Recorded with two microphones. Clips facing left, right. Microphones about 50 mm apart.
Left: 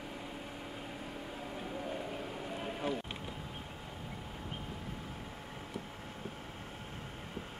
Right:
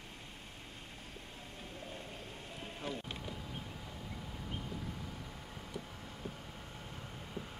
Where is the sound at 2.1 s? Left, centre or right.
Left.